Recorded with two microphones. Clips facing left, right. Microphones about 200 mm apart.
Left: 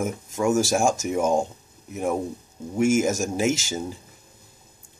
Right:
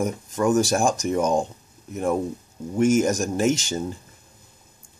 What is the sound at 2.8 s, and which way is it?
Speech, 5° left (ahead or behind).